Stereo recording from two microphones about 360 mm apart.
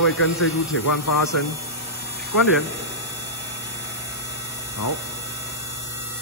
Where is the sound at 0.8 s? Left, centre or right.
Left.